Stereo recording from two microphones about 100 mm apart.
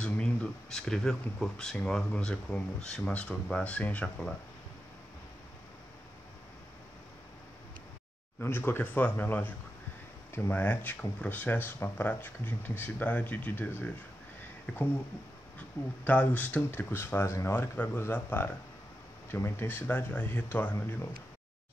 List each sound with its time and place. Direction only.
0.0 s speech: 10° left (ahead or behind)
8.4 s speech: 20° left (ahead or behind)
16.0 s speech: 15° left (ahead or behind)